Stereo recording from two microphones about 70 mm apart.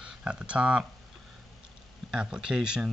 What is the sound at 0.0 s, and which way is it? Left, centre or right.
Speech, centre.